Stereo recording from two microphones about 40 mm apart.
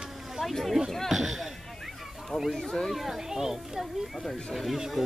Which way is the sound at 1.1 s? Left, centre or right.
Centre.